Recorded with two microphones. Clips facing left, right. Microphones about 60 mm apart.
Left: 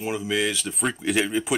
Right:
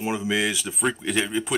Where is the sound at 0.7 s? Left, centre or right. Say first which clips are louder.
Even; centre.